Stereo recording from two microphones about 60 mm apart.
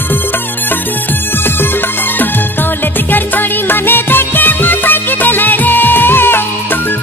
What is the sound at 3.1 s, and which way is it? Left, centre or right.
Music, left.